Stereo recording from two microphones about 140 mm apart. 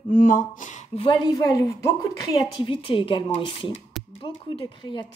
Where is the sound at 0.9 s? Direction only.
45° left (ahead or behind).